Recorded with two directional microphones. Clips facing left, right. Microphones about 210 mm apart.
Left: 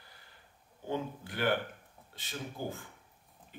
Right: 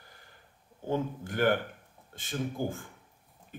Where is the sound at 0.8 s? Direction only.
45° right (ahead or behind).